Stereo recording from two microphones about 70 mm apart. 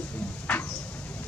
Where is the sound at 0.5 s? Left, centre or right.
Centre.